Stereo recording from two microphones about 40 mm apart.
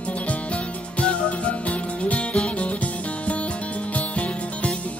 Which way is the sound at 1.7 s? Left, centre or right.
Left.